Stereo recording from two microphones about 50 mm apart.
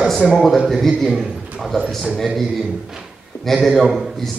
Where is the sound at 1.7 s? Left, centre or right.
Centre.